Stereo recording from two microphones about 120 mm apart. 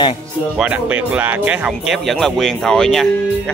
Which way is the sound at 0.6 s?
10° right (ahead or behind).